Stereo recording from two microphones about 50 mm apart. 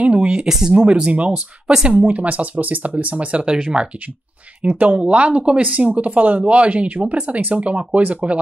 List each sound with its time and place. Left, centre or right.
0.0 s speech: right
0.5 s speech: centre
1.3 s speech: centre
1.9 s speech: right